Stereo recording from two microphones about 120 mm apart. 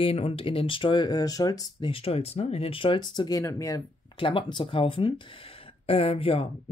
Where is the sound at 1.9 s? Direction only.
55° left (ahead or behind); by 3.8 s 25° left (ahead or behind).